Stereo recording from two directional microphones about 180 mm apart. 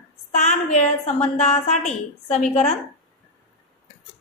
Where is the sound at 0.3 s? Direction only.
40° left (ahead or behind).